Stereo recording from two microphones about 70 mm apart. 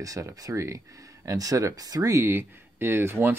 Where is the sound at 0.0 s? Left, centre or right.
Right.